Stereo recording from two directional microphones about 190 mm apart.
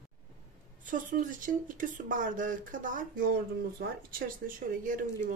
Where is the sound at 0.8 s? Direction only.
45° right (ahead or behind).